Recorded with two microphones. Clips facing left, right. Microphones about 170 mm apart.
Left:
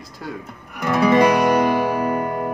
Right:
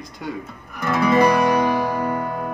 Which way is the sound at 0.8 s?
20° left (ahead or behind).